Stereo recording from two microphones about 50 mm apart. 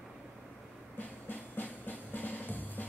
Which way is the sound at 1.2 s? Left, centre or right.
Left.